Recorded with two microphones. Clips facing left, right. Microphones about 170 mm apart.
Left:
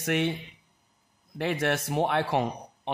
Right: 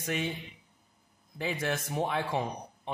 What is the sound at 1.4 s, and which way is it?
A man's voice, 70° left (ahead or behind).